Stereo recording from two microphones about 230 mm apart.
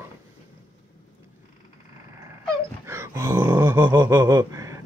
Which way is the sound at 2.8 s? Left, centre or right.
Centre.